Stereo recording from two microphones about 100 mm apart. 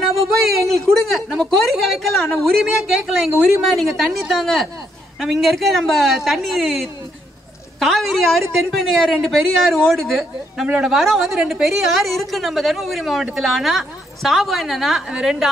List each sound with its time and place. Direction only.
0.6 s speech: 30° right (ahead or behind)
1.0 s a woman's voice: centre (ahead or behind)